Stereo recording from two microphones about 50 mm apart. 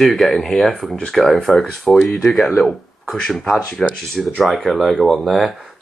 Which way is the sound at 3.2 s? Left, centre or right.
Centre.